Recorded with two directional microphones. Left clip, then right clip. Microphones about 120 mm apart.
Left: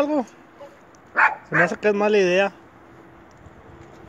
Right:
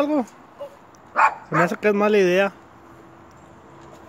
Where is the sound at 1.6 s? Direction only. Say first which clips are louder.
Even; 40° right (ahead or behind).